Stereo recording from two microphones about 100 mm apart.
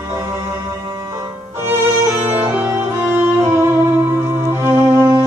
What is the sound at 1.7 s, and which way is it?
Music, 20° right (ahead or behind).